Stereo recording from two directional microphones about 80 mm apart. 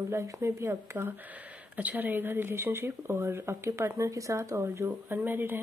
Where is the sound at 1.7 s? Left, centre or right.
Right.